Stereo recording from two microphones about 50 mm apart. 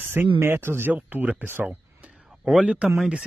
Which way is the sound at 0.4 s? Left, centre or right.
Right.